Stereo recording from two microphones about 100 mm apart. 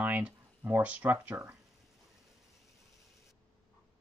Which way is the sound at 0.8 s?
15° right (ahead or behind).